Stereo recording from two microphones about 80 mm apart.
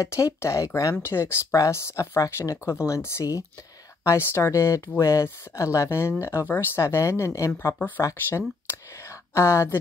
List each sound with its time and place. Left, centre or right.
0.0 s speech: left